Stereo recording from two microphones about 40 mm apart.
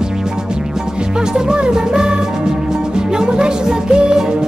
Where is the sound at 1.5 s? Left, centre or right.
Centre.